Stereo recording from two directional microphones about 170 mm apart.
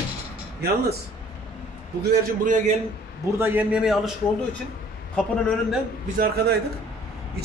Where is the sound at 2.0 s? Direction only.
65° right (ahead or behind).